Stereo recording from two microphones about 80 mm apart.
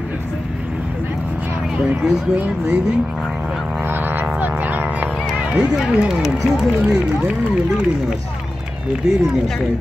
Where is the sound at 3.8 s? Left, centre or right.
Right.